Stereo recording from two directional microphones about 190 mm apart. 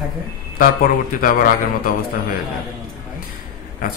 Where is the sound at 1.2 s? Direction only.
45° left (ahead or behind).